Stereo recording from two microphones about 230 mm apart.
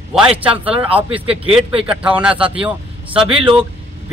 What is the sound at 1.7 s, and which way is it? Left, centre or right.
Speech, right.